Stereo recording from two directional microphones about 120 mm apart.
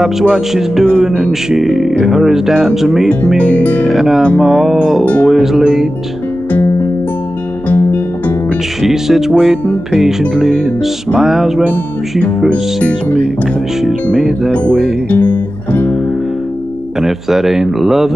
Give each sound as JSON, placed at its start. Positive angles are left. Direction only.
{"t": 0.0, "sound": "speech", "side_deg": -5}
{"t": 5.0, "sound": "music", "side_deg": 15}
{"t": 5.3, "sound": "speech", "side_deg": -5}
{"t": 7.6, "sound": "music", "side_deg": 15}
{"t": 8.8, "sound": "speech", "side_deg": -5}
{"t": 11.6, "sound": "music", "side_deg": 10}
{"t": 14.1, "sound": "speech", "side_deg": -5}
{"t": 15.0, "sound": "music", "side_deg": 15}
{"t": 17.0, "sound": "speech", "side_deg": -5}